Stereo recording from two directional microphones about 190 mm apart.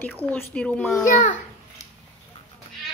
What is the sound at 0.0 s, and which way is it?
A child's voice, 10° left (ahead or behind).